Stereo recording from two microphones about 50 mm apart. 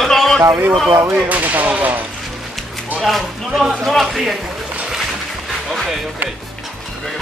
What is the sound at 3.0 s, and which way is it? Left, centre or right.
A man's voice, centre.